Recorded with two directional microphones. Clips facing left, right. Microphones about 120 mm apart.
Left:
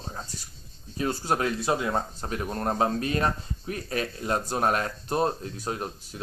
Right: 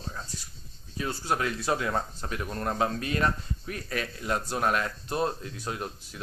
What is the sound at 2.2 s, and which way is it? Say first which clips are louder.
Speech: left 3 dB; 35° left (ahead or behind).